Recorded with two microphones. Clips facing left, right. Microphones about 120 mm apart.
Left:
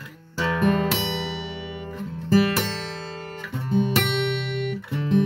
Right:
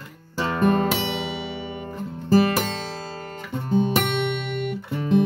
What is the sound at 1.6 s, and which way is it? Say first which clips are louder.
Guitar: right 1 dB; 40° right (ahead or behind).